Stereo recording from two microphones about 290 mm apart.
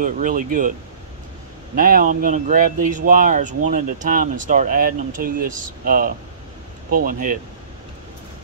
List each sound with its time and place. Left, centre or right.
0.0 s speech: right
1.8 s speech: right